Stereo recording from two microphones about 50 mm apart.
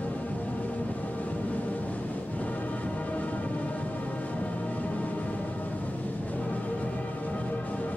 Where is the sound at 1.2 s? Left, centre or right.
Left.